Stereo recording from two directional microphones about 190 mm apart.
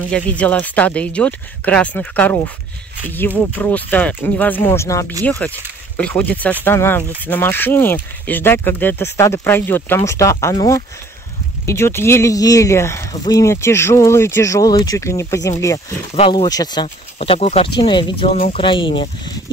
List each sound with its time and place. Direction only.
0.0 s speech: 5° left (ahead or behind)
16.2 s speech: 25° left (ahead or behind)